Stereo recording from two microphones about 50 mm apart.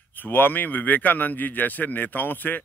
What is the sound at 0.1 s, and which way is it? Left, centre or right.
A man's voice, left.